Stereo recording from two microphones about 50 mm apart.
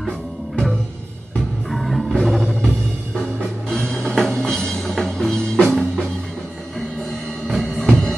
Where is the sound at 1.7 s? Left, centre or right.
Centre.